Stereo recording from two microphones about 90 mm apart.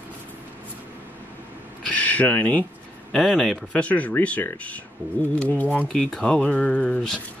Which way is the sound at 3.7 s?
15° left (ahead or behind).